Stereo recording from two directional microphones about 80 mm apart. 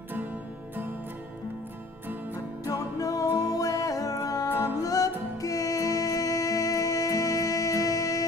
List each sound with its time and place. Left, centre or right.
2.6 s music: left